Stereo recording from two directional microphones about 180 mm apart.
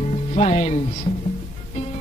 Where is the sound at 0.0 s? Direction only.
35° left (ahead or behind).